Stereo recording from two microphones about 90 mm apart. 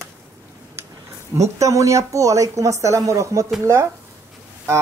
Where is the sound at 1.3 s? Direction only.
35° right (ahead or behind).